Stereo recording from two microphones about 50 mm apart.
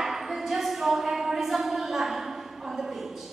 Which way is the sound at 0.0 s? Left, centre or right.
Centre.